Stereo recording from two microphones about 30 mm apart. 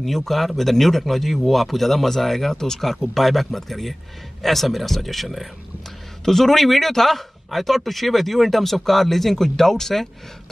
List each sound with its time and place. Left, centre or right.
0.0 s speech: centre
2.5 s speech: centre
6.2 s a man's voice: centre